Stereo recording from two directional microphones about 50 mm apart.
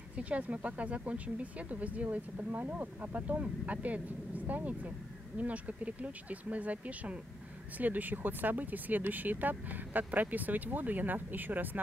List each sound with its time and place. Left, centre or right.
0.1 s speech: right